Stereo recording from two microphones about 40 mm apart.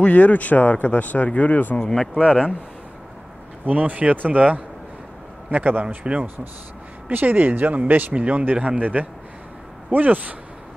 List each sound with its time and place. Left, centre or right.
0.0 s speech: left
1.8 s speech: centre
2.1 s speech: right
3.6 s speech: right
7.1 s a man's voice: right